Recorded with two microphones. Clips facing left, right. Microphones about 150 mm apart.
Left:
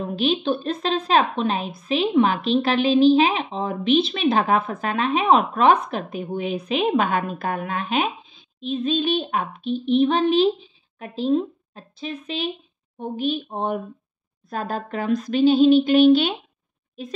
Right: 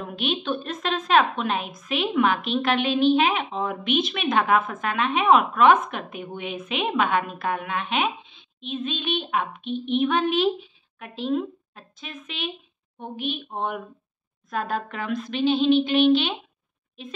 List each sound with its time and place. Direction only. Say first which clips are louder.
0.1 s a woman's voice: left 5 dB; 35° left (ahead or behind)